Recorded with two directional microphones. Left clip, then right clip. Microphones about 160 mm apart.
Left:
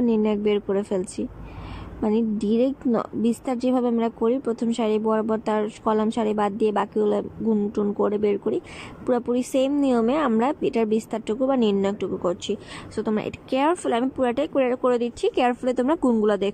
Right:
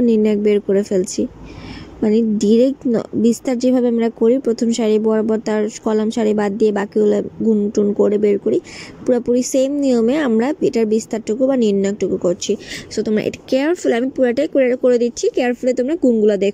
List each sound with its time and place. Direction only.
0.0 s a woman's voice: 30° right (ahead or behind)